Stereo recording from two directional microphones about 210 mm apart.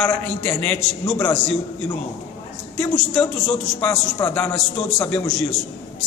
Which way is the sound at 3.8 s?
10° left (ahead or behind).